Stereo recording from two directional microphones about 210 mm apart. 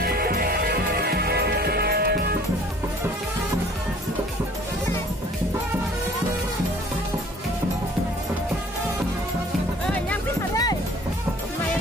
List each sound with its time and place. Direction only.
0.0 s music: 45° right (ahead or behind)
9.8 s music: 5° left (ahead or behind)